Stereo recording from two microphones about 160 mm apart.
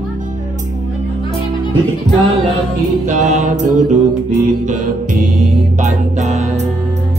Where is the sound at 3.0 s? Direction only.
50° right (ahead or behind).